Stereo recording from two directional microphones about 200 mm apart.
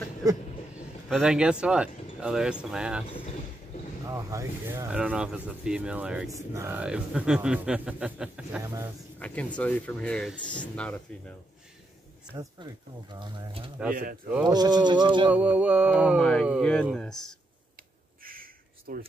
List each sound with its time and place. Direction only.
0.2 s vehicle: 15° right (ahead or behind)
1.0 s speech: centre (ahead or behind)
4.0 s speech: 15° right (ahead or behind)
9.2 s speech: 5° left (ahead or behind)
12.4 s speech: 20° right (ahead or behind)
15.3 s speech: 5° right (ahead or behind)
18.2 s a sound: 45° right (ahead or behind)